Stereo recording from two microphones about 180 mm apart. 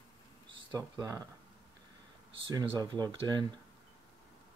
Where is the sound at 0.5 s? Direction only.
25° right (ahead or behind).